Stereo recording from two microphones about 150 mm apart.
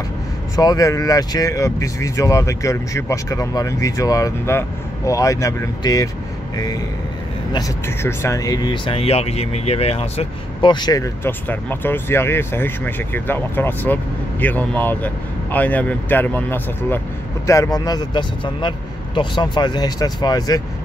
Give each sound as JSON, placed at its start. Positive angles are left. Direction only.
{"t": 0.6, "sound": "speech", "side_deg": 25}
{"t": 11.2, "sound": "speech", "side_deg": 15}